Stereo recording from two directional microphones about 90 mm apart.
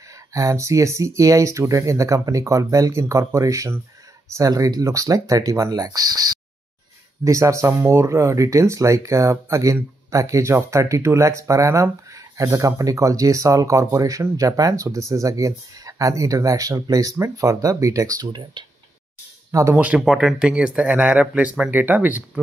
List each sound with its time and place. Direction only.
0.3 s speech: 40° right (ahead or behind)
7.2 s speech: 35° right (ahead or behind); by 18.7 s 55° right (ahead or behind)
19.5 s speech: 35° right (ahead or behind)
19.8 s speech: 15° right (ahead or behind)